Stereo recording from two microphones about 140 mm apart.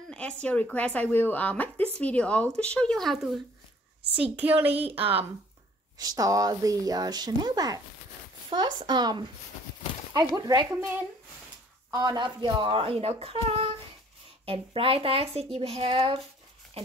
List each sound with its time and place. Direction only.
0.1 s a woman's voice: 10° left (ahead or behind)
4.2 s a woman's voice: 10° right (ahead or behind)
4.7 s speech: 45° right (ahead or behind)
5.9 s speech: 25° right (ahead or behind)
11.9 s speech: 30° right (ahead or behind); by 16.2 s 45° right (ahead or behind)